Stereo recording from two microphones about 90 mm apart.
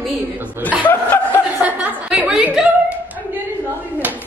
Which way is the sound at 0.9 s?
20° left (ahead or behind).